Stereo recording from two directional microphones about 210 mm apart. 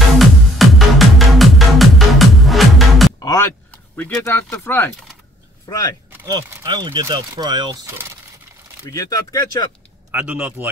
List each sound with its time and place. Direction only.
0.2 s music: centre (ahead or behind)
3.2 s speech: 15° left (ahead or behind)
6.1 s speech: 15° right (ahead or behind)
8.9 s speech: 15° left (ahead or behind)
10.1 s speech: 10° right (ahead or behind)